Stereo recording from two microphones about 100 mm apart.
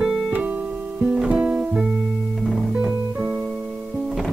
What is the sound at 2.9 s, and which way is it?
Music, 10° right (ahead or behind).